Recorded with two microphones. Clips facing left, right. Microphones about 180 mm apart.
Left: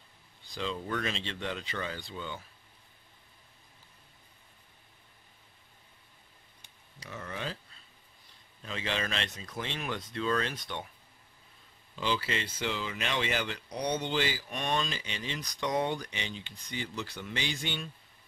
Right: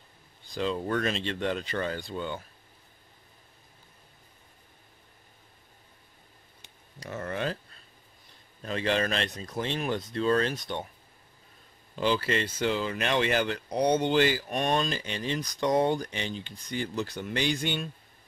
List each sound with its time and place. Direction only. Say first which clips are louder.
0.6 s speech: right 6 dB; 50° right (ahead or behind)
7.0 s a sound: right 7 dB; 50° right (ahead or behind)
8.6 s speech: right 7 dB; 50° right (ahead or behind)
11.9 s speech: right 6 dB; 50° right (ahead or behind)